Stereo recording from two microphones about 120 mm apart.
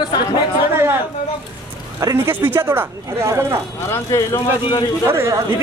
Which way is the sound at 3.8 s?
20° left (ahead or behind).